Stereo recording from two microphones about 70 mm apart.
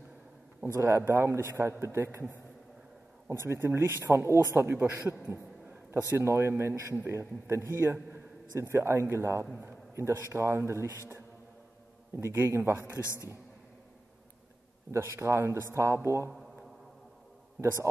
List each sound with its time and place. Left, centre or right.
0.7 s a man's voice: right
5.3 s a sound: right
6.1 s a man's voice: right
12.2 s a man's voice: right
14.9 s a man's voice: right